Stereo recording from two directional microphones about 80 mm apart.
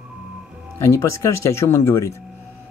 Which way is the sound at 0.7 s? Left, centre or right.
Left.